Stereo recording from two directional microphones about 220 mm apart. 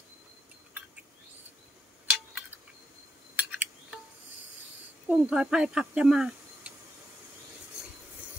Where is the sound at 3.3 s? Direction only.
5° right (ahead or behind).